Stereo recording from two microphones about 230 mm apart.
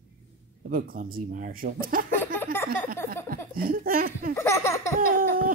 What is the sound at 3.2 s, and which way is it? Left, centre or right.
Speech, right.